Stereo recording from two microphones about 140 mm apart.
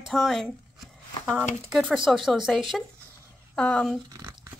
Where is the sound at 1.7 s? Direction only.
Centre (ahead or behind).